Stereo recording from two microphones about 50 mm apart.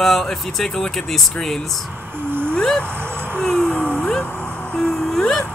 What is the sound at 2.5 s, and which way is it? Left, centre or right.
Vehicle, centre.